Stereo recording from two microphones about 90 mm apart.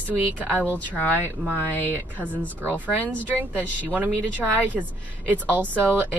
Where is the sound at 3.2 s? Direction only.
20° right (ahead or behind).